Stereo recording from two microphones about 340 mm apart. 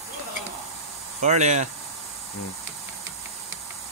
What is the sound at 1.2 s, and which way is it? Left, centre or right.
Speech, centre.